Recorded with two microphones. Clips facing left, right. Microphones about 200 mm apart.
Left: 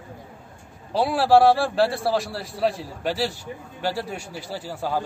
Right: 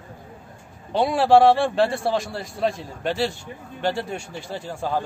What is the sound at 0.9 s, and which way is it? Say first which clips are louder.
A man's voice: right 1 dB; centre (ahead or behind).